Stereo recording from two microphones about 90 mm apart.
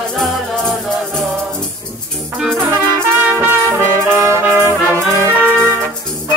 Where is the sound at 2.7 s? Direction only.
25° right (ahead or behind).